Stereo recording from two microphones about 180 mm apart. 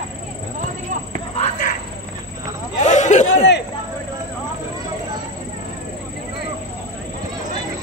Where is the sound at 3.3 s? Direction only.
70° left (ahead or behind).